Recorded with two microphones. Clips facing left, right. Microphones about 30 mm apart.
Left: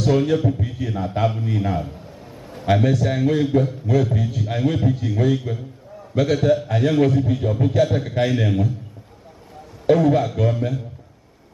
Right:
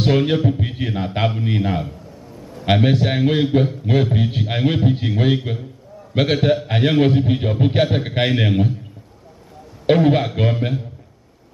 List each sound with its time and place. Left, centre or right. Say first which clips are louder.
0.0 s a man's voice: right 1 dB; right
0.6 s a man's voice: right 2 dB; right
2.2 s a sound: right 1 dB; left
2.6 s a man's voice: right 2 dB; right
9.8 s a man's voice: right 1 dB; right